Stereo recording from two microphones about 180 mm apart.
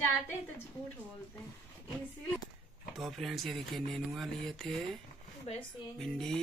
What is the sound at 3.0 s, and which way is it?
Speech, centre (ahead or behind).